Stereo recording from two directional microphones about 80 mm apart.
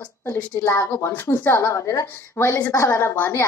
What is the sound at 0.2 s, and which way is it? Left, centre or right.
Speech, left.